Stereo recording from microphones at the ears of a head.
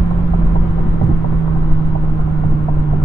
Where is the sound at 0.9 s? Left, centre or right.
Right.